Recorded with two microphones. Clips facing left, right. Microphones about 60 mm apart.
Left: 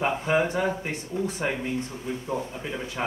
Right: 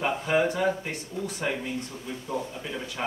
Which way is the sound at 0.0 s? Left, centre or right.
Centre.